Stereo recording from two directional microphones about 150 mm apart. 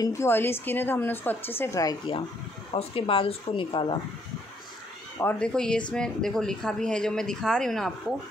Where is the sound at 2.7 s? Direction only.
40° left (ahead or behind).